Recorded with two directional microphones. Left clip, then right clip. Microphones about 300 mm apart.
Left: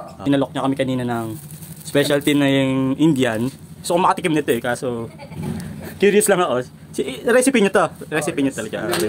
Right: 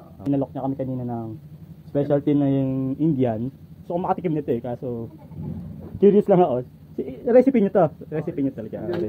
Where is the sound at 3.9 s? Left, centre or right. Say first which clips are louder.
Left 7 dB; centre.